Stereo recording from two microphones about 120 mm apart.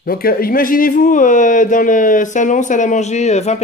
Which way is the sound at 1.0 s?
90° left.